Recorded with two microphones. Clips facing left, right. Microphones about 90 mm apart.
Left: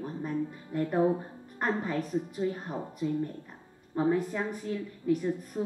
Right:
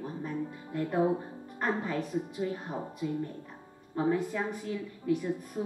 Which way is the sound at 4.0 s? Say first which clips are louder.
Left 1 dB; centre (ahead or behind).